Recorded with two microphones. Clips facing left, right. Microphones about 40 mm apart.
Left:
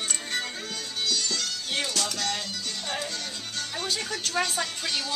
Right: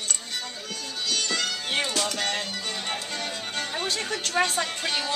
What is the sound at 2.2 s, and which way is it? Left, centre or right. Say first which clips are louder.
Music: right 2 dB; right.